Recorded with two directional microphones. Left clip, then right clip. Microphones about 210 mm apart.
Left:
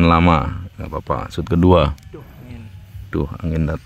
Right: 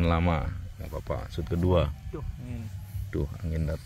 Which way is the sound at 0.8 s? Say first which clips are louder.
Left 11 dB; 70° left (ahead or behind).